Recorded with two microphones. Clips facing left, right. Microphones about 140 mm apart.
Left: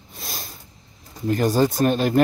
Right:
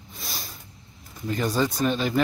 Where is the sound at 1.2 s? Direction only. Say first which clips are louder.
Left 6 dB; 45° left (ahead or behind).